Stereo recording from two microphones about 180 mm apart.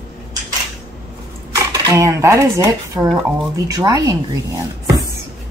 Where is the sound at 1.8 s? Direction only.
15° right (ahead or behind).